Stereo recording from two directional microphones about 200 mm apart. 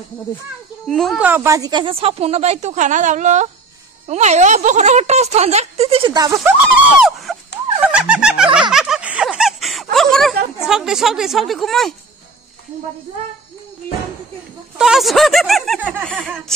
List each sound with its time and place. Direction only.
0.8 s speech: centre (ahead or behind); by 6.5 s 15° right (ahead or behind)
7.0 s a sound: centre (ahead or behind)
10.6 s speech: 5° right (ahead or behind)
14.8 s speech: centre (ahead or behind)